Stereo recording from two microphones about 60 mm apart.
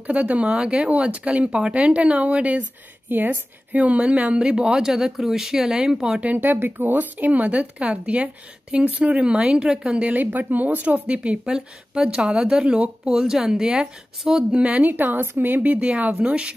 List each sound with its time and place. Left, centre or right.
0.0 s a woman's voice: right; by 6.2 s centre
6.2 s a woman's voice: right; by 10.1 s centre
10.1 s a woman's voice: right; by 14.6 s centre
14.6 s a woman's voice: right